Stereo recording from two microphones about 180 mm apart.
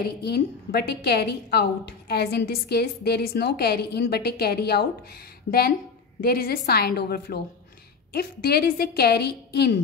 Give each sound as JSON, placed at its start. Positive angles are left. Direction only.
{"t": 0.2, "sound": "a woman's voice", "side_deg": 65}